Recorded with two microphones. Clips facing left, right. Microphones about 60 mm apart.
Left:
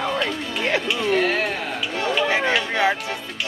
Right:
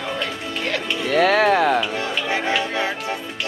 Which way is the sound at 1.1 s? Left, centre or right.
Right.